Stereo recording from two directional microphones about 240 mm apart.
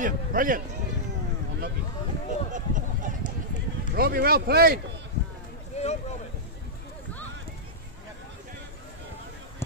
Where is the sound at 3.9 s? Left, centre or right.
Right.